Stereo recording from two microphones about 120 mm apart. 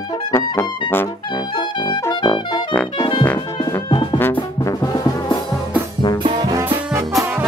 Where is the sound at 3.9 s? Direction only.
40° left (ahead or behind).